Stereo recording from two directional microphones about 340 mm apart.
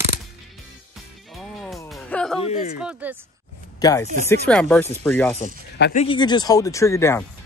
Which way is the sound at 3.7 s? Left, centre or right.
Centre.